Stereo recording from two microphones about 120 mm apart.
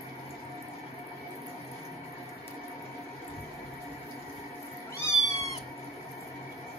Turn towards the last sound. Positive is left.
turn(degrees=25)  # may be behind; listen again after turning